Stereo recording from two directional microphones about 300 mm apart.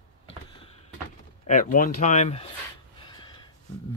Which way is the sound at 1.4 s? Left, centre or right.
Left.